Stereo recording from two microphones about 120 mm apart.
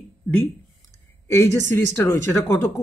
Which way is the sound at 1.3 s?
20° left (ahead or behind).